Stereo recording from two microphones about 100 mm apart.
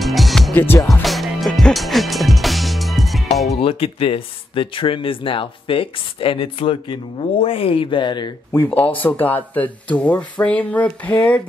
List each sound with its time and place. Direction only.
0.0 s music: centre (ahead or behind)
3.6 s speech: 70° left (ahead or behind); by 8.3 s 50° left (ahead or behind)
8.5 s speech: 15° left (ahead or behind)